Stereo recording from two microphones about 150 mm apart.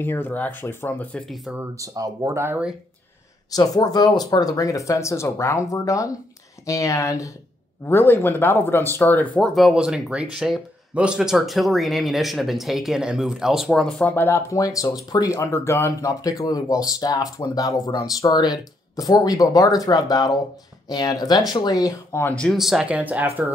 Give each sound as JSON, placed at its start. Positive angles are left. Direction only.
{"t": 0.0, "sound": "speech", "side_deg": 15}
{"t": 1.3, "sound": "speech", "side_deg": 0}
{"t": 1.6, "sound": "speech", "side_deg": -20}
{"t": 3.5, "sound": "speech", "side_deg": 25}
{"t": 9.6, "sound": "speech", "side_deg": -5}
{"t": 14.0, "sound": "speech", "side_deg": 15}
{"t": 22.4, "sound": "speech", "side_deg": 0}